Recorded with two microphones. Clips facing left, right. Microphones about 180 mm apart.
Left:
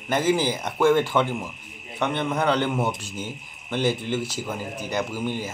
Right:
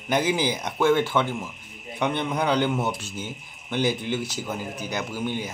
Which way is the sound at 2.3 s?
Centre (ahead or behind).